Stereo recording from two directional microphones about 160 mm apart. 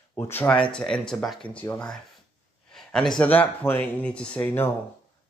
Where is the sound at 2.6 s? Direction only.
5° left (ahead or behind).